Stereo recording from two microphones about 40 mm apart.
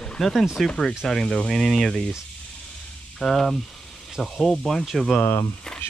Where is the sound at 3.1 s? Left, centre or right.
Centre.